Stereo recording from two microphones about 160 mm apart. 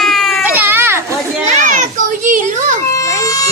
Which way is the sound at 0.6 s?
15° right (ahead or behind).